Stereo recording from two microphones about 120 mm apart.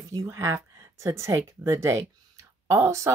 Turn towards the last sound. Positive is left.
turn(degrees=-25)  # may be behind; listen again after turning